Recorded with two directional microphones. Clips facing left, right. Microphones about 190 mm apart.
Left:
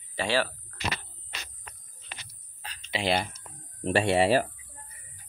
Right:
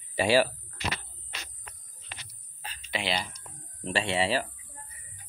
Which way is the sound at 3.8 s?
45° left (ahead or behind).